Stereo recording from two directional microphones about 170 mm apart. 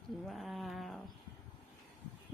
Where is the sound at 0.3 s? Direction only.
Centre (ahead or behind).